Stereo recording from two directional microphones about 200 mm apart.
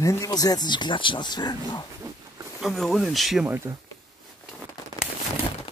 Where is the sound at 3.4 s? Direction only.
10° right (ahead or behind).